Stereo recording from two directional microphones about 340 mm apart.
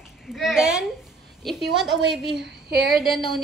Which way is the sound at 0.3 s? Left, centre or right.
Centre.